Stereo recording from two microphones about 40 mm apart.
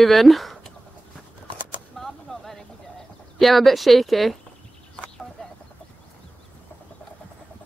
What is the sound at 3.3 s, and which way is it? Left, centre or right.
A woman's voice, centre.